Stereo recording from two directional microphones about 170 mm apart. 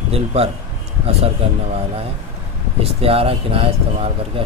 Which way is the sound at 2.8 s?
35° right (ahead or behind).